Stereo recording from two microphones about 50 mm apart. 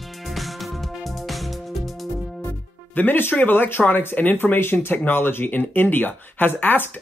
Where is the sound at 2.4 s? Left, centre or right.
Left.